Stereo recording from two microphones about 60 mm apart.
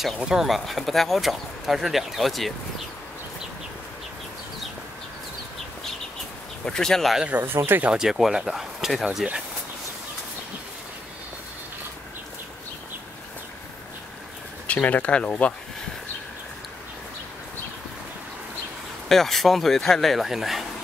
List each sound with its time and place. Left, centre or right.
0.2 s speech: centre
6.6 s speech: centre
7.4 s speech: right
8.0 s speech: centre
14.7 s speech: left
19.0 s speech: centre